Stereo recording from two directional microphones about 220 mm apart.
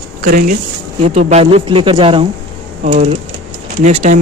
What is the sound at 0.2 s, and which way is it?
Speech, 40° right (ahead or behind).